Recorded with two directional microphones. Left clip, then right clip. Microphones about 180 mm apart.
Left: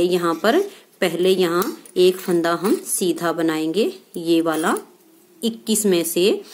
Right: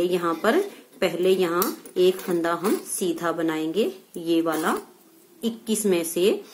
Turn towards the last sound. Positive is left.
turn(degrees=30)  # may be behind; listen again after turning